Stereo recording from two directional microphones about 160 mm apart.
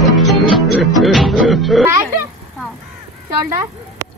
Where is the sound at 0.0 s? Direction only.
Centre (ahead or behind).